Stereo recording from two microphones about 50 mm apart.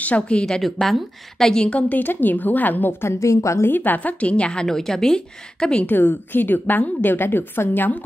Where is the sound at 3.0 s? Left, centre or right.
Left.